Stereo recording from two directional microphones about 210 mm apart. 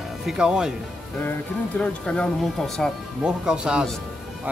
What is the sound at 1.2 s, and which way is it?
Speech, 10° left (ahead or behind).